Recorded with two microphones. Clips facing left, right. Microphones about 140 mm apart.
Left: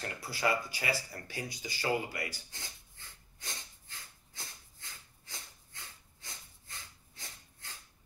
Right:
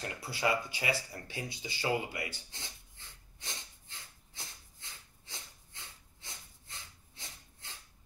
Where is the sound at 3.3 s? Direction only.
25° right (ahead or behind).